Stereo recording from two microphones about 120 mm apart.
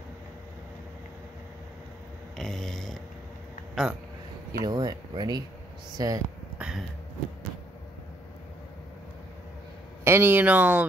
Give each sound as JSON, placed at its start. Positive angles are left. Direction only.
{"t": 2.3, "sound": "a sound", "side_deg": 5}
{"t": 3.8, "sound": "speech", "side_deg": 0}
{"t": 4.5, "sound": "speech", "side_deg": -35}
{"t": 10.0, "sound": "speech", "side_deg": -20}